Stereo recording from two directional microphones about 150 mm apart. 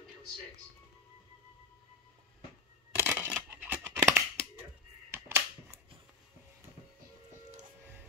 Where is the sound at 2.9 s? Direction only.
15° right (ahead or behind).